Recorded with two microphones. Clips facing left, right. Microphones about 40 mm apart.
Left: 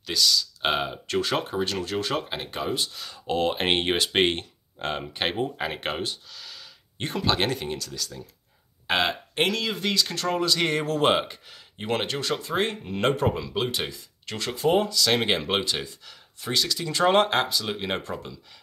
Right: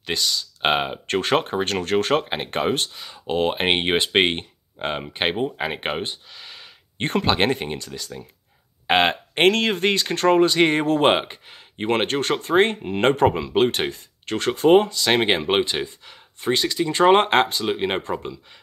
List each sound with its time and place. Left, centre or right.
0.0 s speech: right
1.0 s speech: right
2.2 s speech: right
2.5 s speech: right
2.9 s speech: right